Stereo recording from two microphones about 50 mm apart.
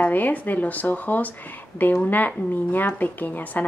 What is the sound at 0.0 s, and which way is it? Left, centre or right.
Speech, left.